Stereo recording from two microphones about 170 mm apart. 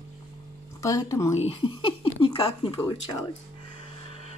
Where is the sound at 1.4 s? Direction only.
35° left (ahead or behind).